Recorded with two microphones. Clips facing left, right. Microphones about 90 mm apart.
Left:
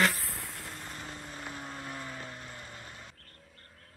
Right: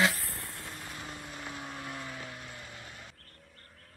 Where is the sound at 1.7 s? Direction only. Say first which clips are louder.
Even; 25° left (ahead or behind).